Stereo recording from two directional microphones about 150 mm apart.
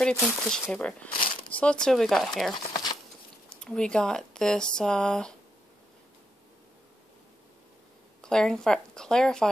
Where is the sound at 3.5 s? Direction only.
5° left (ahead or behind).